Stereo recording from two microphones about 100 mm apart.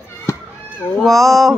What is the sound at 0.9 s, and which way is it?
Speech, centre (ahead or behind).